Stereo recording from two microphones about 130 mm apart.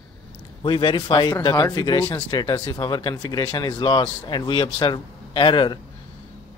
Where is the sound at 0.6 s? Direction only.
40° left (ahead or behind).